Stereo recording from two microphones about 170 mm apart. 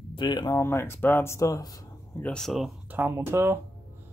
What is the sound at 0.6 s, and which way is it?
Speech, 15° left (ahead or behind).